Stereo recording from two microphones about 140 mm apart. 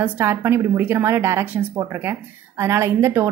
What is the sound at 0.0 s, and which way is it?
A woman's voice, 15° right (ahead or behind).